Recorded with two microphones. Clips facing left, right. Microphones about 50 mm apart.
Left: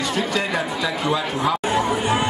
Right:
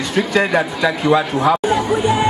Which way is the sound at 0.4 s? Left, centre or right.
Right.